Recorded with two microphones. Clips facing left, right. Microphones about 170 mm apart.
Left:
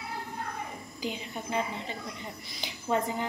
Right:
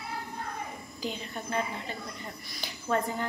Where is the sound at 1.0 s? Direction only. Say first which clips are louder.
Even; 15° left (ahead or behind).